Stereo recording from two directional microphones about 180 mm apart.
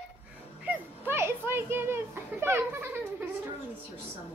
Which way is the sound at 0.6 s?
10° right (ahead or behind).